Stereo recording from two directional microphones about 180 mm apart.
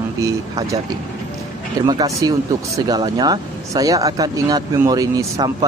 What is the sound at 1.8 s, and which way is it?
Speech, 20° right (ahead or behind).